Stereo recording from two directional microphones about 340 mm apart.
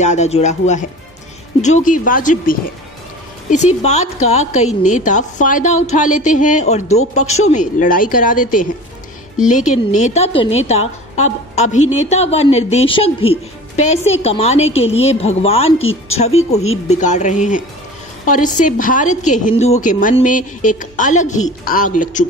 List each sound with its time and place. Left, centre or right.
0.0 s a woman's voice: centre